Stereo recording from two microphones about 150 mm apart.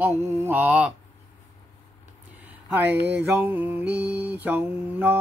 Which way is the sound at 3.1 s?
10° right (ahead or behind).